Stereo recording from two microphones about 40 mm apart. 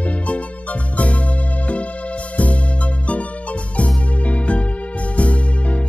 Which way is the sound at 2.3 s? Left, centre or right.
Left.